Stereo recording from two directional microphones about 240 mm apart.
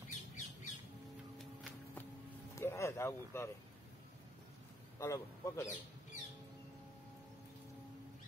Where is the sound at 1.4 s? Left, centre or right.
Centre.